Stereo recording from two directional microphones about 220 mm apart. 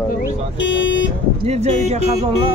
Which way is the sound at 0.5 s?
55° left (ahead or behind).